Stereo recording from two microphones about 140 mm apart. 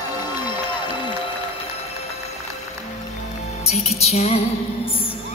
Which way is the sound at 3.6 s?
50° left (ahead or behind).